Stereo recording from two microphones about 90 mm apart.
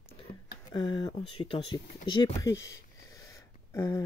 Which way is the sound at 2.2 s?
35° left (ahead or behind).